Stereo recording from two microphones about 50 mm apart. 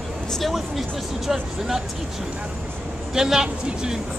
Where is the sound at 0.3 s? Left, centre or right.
Centre.